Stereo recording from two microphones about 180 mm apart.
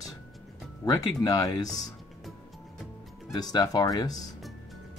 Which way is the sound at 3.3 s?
20° left (ahead or behind).